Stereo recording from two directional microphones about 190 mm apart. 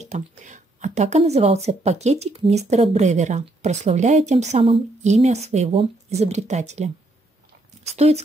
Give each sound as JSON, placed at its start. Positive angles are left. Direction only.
{"t": 0.0, "sound": "a woman's voice", "side_deg": -40}